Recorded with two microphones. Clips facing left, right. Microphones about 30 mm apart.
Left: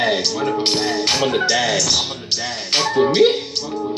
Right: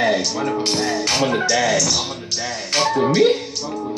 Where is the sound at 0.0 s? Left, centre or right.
Left.